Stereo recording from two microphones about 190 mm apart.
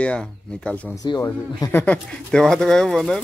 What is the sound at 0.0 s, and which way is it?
Speech, 5° left (ahead or behind).